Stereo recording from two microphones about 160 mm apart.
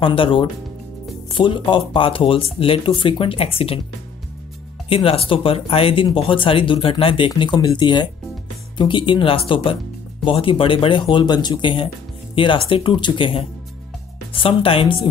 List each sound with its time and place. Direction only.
0.0 s speech: 35° left (ahead or behind)
4.8 s speech: 35° left (ahead or behind)